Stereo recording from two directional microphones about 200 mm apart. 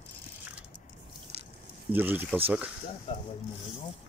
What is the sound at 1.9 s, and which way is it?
Speech, 10° right (ahead or behind).